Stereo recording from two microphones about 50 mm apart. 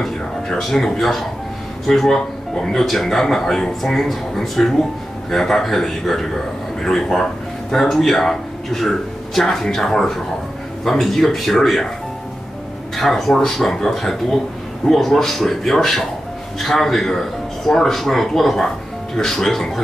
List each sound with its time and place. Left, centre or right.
0.0 s speech: centre
12.9 s speech: centre
14.9 s speech: centre